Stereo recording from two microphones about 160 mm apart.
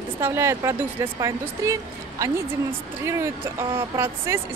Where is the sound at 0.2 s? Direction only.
15° right (ahead or behind).